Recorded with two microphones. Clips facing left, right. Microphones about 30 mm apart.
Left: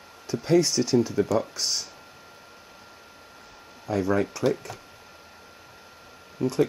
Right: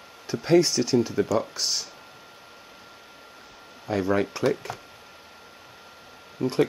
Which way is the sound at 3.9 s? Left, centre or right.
Right.